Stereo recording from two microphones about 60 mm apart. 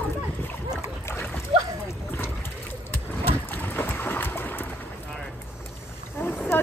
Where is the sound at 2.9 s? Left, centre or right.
Left.